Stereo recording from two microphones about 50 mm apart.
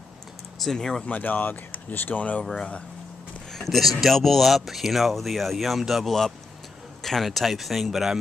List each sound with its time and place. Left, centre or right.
0.6 s speech: centre
1.0 s speech: left
2.5 s speech: centre
3.5 s speech: centre